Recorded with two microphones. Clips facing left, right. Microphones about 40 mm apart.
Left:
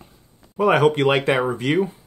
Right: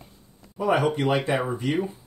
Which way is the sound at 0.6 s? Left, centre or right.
Left.